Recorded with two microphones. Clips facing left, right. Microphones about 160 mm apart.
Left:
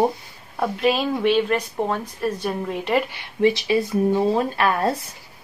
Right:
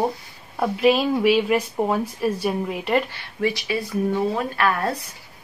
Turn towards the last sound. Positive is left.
turn(degrees=25)  # may be behind; listen again after turning